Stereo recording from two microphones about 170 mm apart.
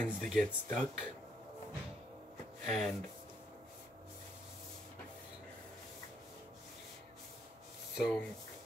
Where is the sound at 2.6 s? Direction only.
Centre (ahead or behind).